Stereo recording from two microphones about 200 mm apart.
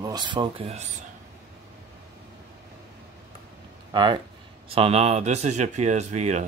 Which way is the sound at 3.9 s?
25° right (ahead or behind).